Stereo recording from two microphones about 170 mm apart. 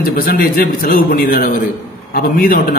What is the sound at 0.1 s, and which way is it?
A man's voice, 55° left (ahead or behind).